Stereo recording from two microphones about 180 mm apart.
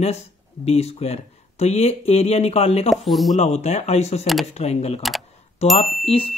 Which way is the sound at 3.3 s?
35° left (ahead or behind).